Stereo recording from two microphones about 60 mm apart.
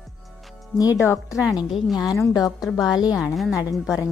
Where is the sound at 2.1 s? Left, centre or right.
Left.